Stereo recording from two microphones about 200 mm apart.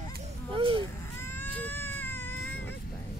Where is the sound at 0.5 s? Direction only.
25° right (ahead or behind).